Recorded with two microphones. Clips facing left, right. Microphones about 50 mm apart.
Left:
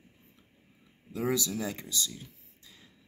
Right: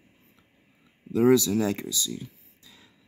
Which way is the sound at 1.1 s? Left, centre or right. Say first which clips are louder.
Right 11 dB; right.